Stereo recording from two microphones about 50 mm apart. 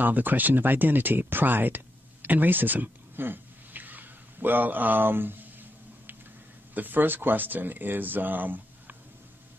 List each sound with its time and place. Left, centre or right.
0.0 s speech: right
2.2 s a sound: right
6.7 s speech: right